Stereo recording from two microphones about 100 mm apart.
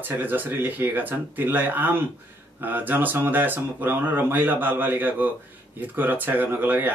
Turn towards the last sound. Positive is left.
turn(degrees=-20)  # may be behind; listen again after turning